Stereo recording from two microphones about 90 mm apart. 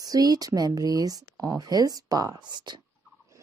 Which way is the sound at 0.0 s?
45° right (ahead or behind).